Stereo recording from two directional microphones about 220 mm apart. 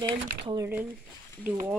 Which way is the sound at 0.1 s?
20° right (ahead or behind).